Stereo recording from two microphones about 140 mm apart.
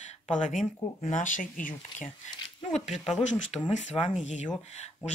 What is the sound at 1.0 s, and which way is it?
Speech, 65° left (ahead or behind).